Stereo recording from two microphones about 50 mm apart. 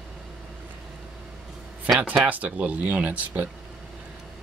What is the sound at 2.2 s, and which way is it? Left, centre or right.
Speech, right.